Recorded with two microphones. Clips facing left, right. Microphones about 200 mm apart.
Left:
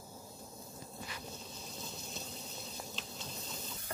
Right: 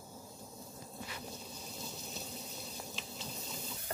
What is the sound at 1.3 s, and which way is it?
Water, 10° right (ahead or behind).